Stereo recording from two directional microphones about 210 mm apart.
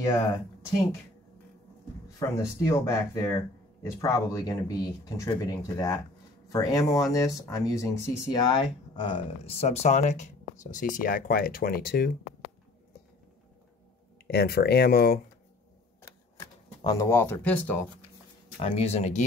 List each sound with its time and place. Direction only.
2.1 s speech: 15° left (ahead or behind); by 12.1 s 45° left (ahead or behind)
14.2 s speech: 50° left (ahead or behind)
16.0 s camera: 15° left (ahead or behind)
18.6 s speech: 30° left (ahead or behind)